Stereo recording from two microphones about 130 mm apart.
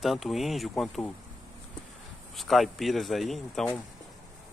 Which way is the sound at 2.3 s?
Centre (ahead or behind).